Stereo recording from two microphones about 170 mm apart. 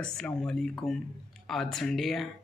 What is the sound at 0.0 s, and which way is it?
Speech, 5° left (ahead or behind).